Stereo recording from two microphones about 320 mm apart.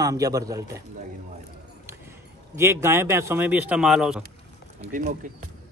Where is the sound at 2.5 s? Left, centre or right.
Centre.